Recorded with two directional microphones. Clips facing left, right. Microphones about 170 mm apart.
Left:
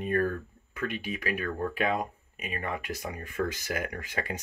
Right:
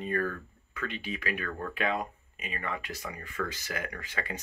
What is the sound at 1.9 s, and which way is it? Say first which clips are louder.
Speech: left 2 dB; 45° left (ahead or behind).